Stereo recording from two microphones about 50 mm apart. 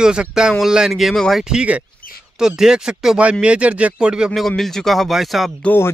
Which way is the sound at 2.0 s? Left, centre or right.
Left.